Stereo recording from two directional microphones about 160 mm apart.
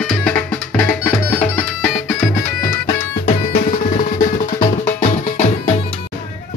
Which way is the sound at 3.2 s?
50° left (ahead or behind).